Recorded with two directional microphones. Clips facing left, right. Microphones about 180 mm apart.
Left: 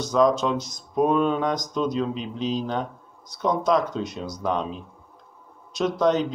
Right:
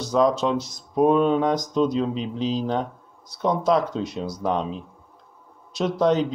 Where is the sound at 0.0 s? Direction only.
30° right (ahead or behind).